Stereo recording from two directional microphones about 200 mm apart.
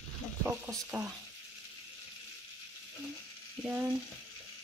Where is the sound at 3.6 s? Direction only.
10° right (ahead or behind).